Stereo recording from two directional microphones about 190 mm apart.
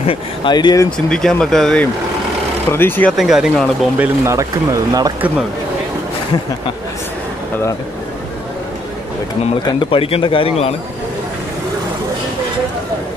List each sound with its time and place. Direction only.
0.0 s a man's voice: 30° left (ahead or behind)
0.9 s speech: 5° left (ahead or behind)
4.2 s speech: 15° right (ahead or behind)
9.7 s a man's voice: 30° left (ahead or behind)